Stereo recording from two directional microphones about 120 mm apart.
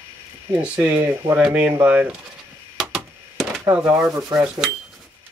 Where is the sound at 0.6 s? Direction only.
10° right (ahead or behind).